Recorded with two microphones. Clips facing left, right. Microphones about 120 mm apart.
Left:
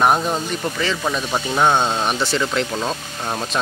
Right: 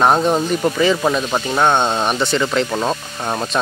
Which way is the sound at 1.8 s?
20° right (ahead or behind).